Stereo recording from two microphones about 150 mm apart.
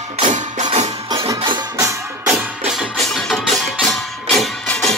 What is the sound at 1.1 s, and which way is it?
Music, 20° right (ahead or behind).